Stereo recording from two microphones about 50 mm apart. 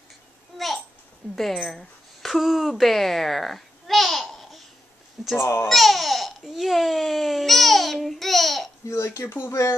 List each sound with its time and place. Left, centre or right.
1.3 s speech: centre
2.2 s a sound: centre
5.4 s speech: left
5.7 s babbling: centre
8.8 s speech: left
9.3 s speech: left